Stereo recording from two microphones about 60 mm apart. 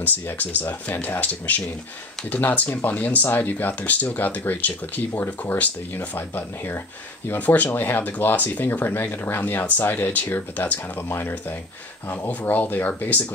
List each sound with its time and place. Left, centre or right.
0.0 s speech: left
5.9 s speech: left
7.3 s speech: left
12.3 s speech: left